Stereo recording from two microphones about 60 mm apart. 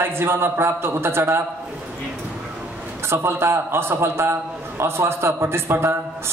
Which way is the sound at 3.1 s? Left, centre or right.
Right.